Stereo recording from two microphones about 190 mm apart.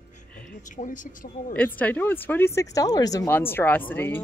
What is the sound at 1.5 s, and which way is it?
Speech, 10° left (ahead or behind).